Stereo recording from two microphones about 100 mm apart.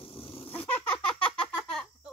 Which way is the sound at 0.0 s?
70° left (ahead or behind).